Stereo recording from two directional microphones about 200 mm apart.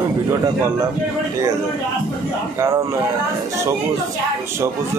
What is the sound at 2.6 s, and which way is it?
Speech, 15° right (ahead or behind).